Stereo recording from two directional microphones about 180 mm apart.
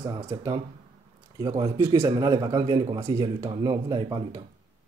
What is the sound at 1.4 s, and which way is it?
A man's voice, 20° right (ahead or behind).